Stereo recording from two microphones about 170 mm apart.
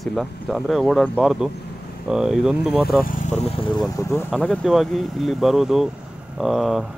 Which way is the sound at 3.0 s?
50° left (ahead or behind).